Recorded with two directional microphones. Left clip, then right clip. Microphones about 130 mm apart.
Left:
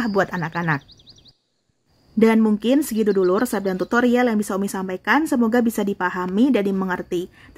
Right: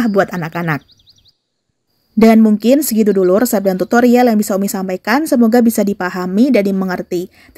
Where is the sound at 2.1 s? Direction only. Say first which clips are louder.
Right 7 dB; 30° right (ahead or behind).